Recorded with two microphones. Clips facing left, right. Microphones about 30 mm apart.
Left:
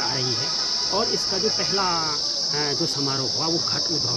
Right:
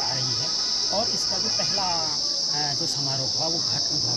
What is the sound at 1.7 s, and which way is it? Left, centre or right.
Speech, left.